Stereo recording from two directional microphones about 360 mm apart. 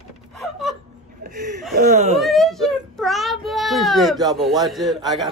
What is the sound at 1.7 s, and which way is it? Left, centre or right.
Speech, centre.